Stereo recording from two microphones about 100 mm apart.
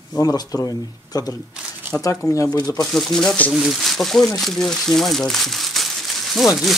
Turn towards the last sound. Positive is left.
turn(degrees=0)  # may be behind; listen again after turning